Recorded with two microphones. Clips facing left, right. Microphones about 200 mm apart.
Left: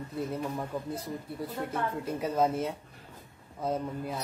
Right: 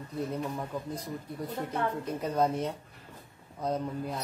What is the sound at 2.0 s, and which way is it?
Speech, 5° left (ahead or behind).